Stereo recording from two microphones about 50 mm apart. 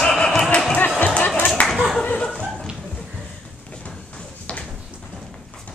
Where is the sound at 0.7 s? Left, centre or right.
Left.